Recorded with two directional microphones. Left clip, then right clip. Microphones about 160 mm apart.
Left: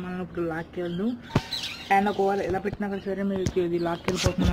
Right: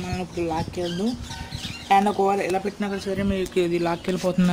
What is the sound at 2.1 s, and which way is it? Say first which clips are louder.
Speech: right 3 dB; 30° right (ahead or behind).